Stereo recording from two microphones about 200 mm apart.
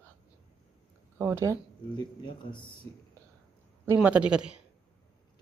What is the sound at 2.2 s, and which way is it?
Speech, 25° left (ahead or behind).